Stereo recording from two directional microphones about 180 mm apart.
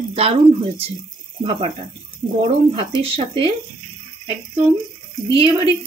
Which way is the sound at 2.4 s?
30° right (ahead or behind).